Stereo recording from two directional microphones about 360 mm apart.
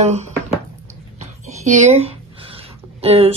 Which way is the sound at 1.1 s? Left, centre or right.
Centre.